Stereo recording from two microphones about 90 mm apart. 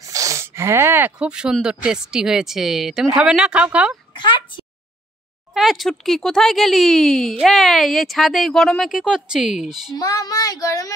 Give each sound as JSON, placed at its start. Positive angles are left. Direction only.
{"t": 0.0, "sound": "a sound", "side_deg": -40}
{"t": 1.2, "sound": "speech", "side_deg": -10}
{"t": 5.5, "sound": "speech", "side_deg": 0}
{"t": 9.9, "sound": "speech", "side_deg": 45}